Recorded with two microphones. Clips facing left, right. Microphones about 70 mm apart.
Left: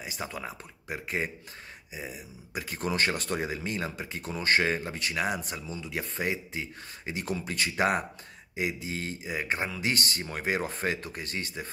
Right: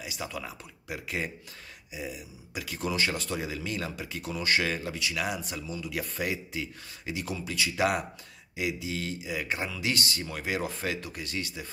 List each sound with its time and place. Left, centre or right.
0.0 s a man's voice: left